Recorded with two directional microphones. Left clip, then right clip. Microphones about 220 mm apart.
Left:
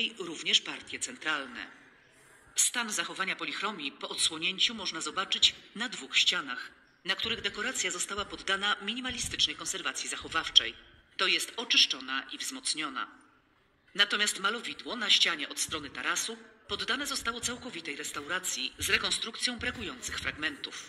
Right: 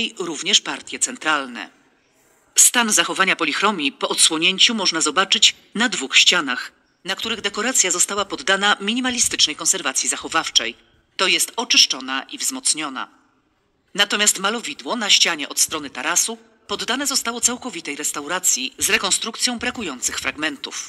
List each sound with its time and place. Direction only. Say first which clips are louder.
0.0 s speech: right 9 dB; 60° right (ahead or behind)